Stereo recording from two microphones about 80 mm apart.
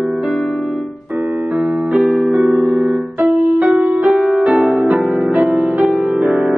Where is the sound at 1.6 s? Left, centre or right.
Centre.